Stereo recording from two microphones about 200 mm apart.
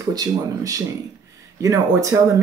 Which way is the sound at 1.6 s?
15° right (ahead or behind).